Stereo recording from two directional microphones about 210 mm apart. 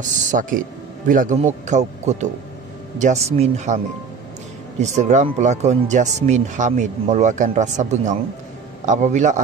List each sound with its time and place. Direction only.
0.0 s a man's voice: 35° right (ahead or behind)